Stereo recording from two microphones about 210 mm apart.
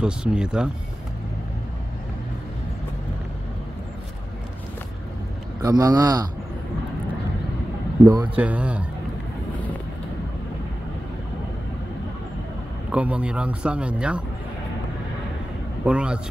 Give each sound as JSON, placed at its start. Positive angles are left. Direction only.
{"t": 0.0, "sound": "speech", "side_deg": -5}
{"t": 5.6, "sound": "a man's voice", "side_deg": -15}
{"t": 8.4, "sound": "a man's voice", "side_deg": -5}
{"t": 12.9, "sound": "speech", "side_deg": -5}
{"t": 15.8, "sound": "speech", "side_deg": -5}